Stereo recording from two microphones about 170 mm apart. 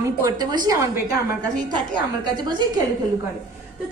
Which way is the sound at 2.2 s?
25° right (ahead or behind).